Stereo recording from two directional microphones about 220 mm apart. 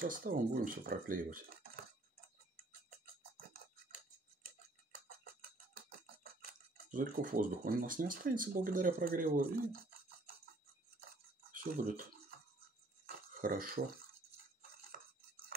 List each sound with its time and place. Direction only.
0.0 s speech: 40° right (ahead or behind)
6.9 s speech: 40° right (ahead or behind)
11.5 s speech: 40° right (ahead or behind)
13.0 s a sound: 40° right (ahead or behind)